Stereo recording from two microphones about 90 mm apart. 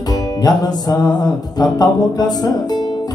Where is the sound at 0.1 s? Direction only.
45° left (ahead or behind).